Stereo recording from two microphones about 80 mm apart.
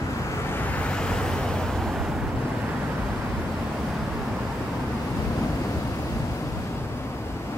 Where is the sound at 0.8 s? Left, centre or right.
Centre.